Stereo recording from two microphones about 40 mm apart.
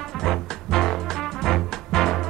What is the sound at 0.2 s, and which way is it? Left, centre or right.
Music, centre.